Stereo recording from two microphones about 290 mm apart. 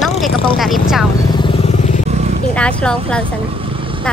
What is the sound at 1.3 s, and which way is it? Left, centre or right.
Vehicle, centre.